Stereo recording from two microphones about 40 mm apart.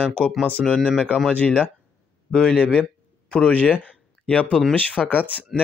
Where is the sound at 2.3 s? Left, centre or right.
Centre.